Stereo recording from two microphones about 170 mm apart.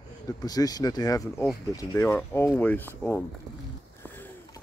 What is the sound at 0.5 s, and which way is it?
Speech, 20° left (ahead or behind).